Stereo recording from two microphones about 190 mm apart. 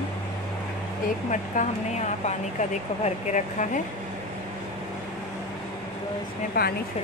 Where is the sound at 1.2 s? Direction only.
40° left (ahead or behind).